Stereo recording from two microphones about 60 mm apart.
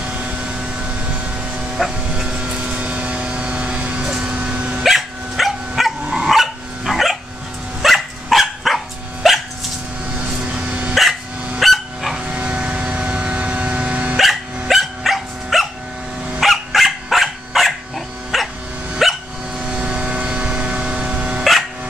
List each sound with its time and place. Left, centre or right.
0.0 s a sound: right
1.8 s vehicle: centre
4.8 s dog: centre
10.4 s dog: centre
11.6 s dog: centre
12.2 s vehicle: centre
14.1 s dog: centre
19.6 s vehicle: centre